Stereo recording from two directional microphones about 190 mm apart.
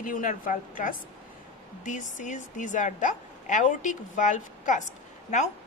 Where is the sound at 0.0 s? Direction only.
45° left (ahead or behind).